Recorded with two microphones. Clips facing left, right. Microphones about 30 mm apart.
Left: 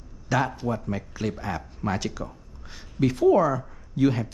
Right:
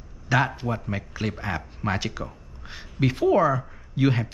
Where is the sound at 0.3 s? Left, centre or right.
Centre.